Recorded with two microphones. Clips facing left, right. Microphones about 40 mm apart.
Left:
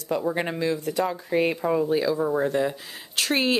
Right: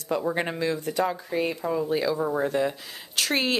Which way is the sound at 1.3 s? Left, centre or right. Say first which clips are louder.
Left 4 dB; left.